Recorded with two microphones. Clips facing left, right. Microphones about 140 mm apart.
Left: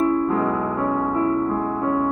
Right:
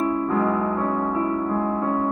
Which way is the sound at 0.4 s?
5° left (ahead or behind).